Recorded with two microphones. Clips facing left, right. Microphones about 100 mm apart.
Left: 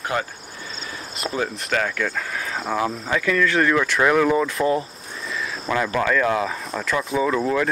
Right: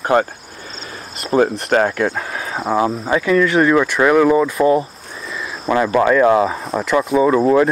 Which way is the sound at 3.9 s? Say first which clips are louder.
Right 5 dB; 10° right (ahead or behind).